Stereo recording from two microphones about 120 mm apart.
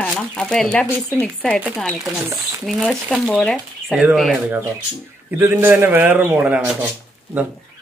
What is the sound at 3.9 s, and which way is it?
Speech, 10° right (ahead or behind).